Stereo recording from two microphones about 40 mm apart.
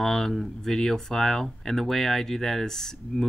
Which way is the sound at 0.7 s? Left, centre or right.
Centre.